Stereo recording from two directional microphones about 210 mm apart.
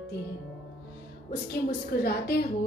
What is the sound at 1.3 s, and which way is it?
A woman's voice, 45° left (ahead or behind).